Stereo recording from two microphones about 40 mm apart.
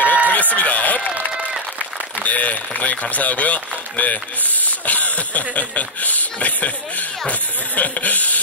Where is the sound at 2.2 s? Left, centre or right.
Left.